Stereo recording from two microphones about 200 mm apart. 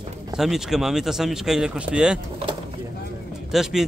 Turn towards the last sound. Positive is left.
turn(degrees=0)  # may be behind; listen again after turning